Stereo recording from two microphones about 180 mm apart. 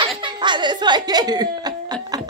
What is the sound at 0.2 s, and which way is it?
Speech, 25° right (ahead or behind).